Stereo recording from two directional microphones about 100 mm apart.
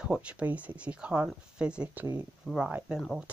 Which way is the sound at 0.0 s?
10° right (ahead or behind).